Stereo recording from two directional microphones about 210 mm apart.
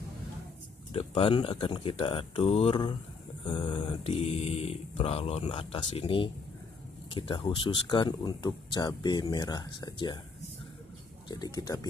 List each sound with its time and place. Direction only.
0.9 s speech: 25° left (ahead or behind)
11.2 s speech: 20° left (ahead or behind)